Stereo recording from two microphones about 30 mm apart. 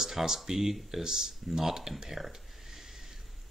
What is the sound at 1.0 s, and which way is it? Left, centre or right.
Speech, right.